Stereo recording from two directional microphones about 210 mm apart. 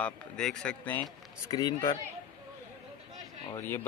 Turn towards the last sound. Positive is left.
turn(degrees=10)  # may be behind; listen again after turning